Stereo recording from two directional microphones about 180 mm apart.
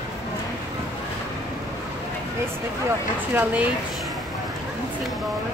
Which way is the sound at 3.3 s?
10° right (ahead or behind).